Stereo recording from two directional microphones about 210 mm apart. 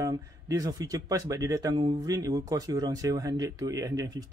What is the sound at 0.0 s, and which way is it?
A man's voice, 15° right (ahead or behind).